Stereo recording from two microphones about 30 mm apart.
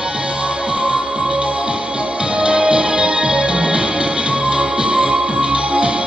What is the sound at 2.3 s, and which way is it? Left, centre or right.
Music, right.